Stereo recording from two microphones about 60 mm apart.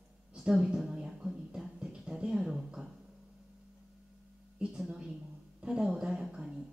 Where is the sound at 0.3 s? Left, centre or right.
Centre.